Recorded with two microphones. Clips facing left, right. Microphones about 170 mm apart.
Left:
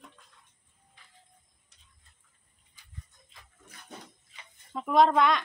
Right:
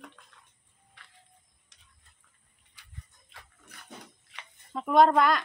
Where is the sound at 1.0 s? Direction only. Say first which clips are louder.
Right 3 dB; 75° right (ahead or behind).